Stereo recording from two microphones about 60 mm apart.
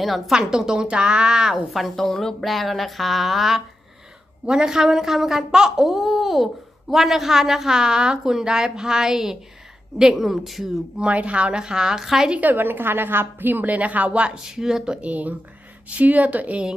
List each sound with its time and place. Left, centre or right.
0.3 s speech: centre
1.7 s speech: centre
11.0 s speech: right; by 12.3 s centre
12.3 s a woman's voice: right; by 15.0 s centre
15.0 s a woman's voice: right